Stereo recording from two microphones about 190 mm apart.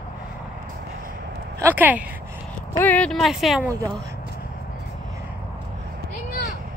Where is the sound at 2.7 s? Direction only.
10° left (ahead or behind).